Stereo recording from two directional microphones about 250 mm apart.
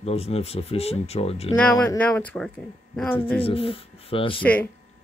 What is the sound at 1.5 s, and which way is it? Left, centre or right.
Speech, centre.